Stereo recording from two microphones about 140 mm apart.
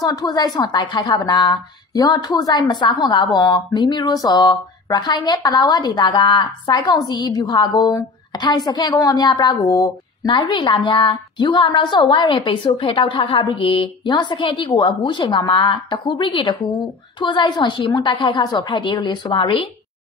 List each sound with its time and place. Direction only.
0.0 s a woman's voice: 25° left (ahead or behind)